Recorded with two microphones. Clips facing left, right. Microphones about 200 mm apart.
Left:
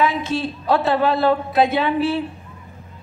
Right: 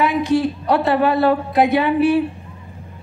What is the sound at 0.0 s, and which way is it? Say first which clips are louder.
A woman's voice: right 4 dB; 15° right (ahead or behind).